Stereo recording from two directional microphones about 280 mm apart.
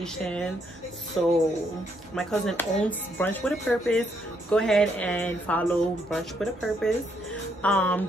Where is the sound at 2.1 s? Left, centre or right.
Centre.